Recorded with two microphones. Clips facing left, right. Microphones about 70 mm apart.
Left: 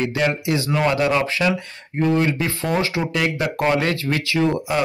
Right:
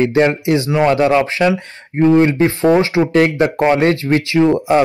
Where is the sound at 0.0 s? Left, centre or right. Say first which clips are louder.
Right 8 dB; right.